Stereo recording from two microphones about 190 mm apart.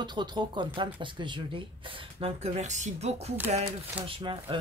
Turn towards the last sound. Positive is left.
turn(degrees=-25)  # may be behind; listen again after turning